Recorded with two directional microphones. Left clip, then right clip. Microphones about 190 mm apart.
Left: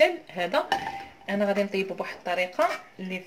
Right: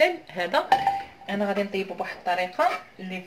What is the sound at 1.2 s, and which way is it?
Speech, 25° left (ahead or behind).